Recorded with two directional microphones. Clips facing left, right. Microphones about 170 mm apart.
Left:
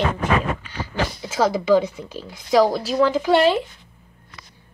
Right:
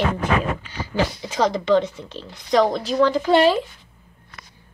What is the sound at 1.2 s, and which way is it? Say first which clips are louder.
Speech: left 3 dB; 5° left (ahead or behind).